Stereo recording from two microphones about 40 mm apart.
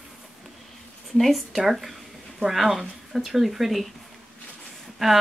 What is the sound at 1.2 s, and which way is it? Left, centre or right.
Speech, centre.